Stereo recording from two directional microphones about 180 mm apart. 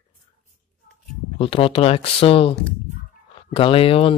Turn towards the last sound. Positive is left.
turn(degrees=30)  # may be behind; listen again after turning